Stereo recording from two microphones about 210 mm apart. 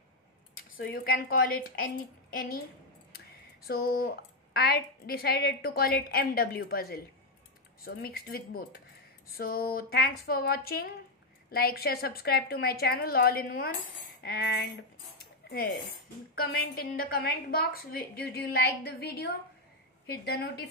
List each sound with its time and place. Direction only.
0.7 s a woman's voice: 45° left (ahead or behind)
3.6 s a woman's voice: 45° left (ahead or behind)
16.3 s a woman's voice: 45° left (ahead or behind)